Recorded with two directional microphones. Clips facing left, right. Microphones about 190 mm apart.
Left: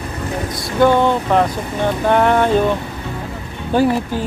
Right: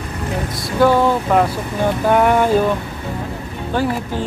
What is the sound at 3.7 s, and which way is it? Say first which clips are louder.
Speech: left 5 dB; 15° left (ahead or behind).